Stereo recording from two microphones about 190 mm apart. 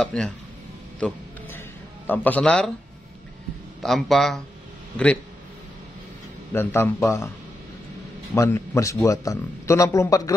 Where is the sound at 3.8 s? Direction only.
Centre (ahead or behind).